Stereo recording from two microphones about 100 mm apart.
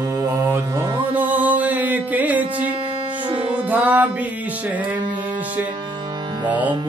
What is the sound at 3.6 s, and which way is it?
Music, 15° right (ahead or behind).